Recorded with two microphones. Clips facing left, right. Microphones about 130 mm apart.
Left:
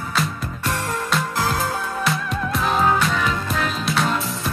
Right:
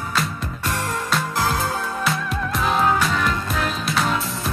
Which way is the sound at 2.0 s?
Centre (ahead or behind).